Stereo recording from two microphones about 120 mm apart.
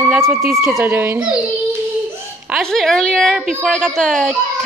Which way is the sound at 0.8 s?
15° right (ahead or behind).